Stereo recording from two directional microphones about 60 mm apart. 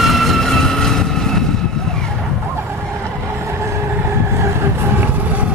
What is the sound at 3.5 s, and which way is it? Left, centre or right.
Vehicle, right.